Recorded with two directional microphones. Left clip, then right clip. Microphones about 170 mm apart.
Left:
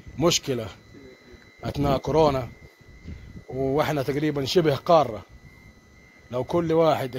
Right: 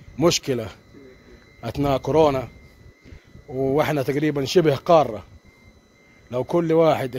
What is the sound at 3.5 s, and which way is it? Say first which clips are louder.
Speech: right 3 dB; 40° right (ahead or behind).